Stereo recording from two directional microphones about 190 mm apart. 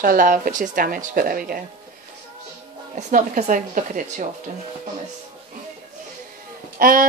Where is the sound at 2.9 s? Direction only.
40° right (ahead or behind).